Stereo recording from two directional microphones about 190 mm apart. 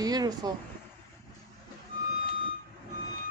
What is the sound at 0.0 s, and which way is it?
Speech, 20° right (ahead or behind).